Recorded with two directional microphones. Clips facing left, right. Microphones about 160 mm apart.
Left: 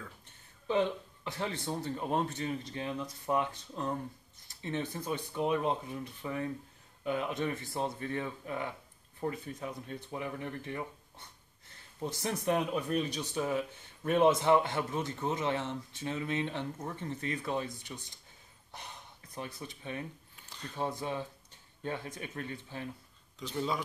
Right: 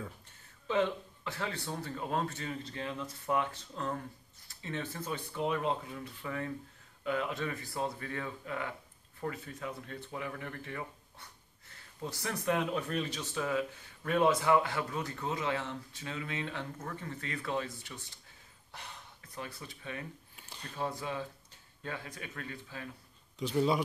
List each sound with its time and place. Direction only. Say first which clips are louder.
0.7 s speech: left 1 dB; 15° left (ahead or behind)
18.7 s gasp: left 1 dB; 15° left (ahead or behind)
20.7 s speech: left 1 dB; 20° left (ahead or behind)
23.4 s speech: right 5 dB; 15° right (ahead or behind)